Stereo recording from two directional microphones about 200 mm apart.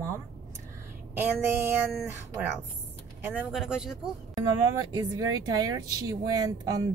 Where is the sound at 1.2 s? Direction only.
10° right (ahead or behind).